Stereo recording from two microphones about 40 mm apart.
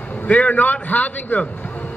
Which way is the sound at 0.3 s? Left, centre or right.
Left.